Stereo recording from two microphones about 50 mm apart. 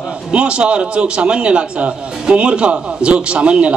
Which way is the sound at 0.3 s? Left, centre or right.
Right.